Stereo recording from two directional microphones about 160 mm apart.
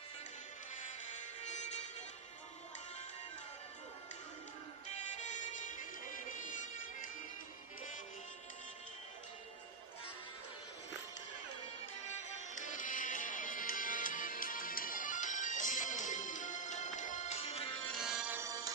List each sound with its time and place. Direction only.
1.4 s music: 45° left (ahead or behind)
4.8 s music: 45° left (ahead or behind)
12.2 s music: 50° left (ahead or behind)
17.9 s music: 5° right (ahead or behind); by 18.7 s 20° right (ahead or behind)